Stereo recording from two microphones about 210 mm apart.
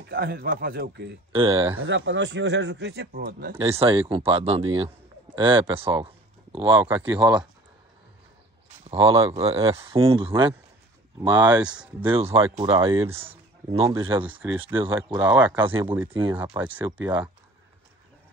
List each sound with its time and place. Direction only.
0.2 s speech: 50° right (ahead or behind)
1.3 s speech: 25° right (ahead or behind)
1.9 s speech: 60° right (ahead or behind)
4.1 s a man's voice: 25° right (ahead or behind)
6.9 s speech: 10° right (ahead or behind)
8.9 s speech: 25° right (ahead or behind)
11.6 s speech: 5° right (ahead or behind)
12.2 s a man's voice: 30° right (ahead or behind)
15.8 s speech: 10° right (ahead or behind)